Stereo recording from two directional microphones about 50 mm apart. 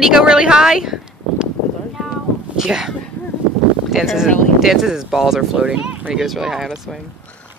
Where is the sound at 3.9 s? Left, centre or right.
Centre.